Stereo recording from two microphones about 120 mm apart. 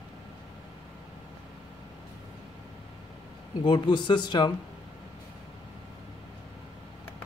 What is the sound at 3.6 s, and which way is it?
Speech, 40° left (ahead or behind).